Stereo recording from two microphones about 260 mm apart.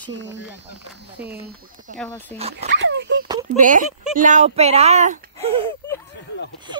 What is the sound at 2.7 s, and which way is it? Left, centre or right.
Speech, right.